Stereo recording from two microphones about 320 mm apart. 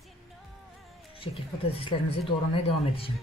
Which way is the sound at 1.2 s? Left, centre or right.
Centre.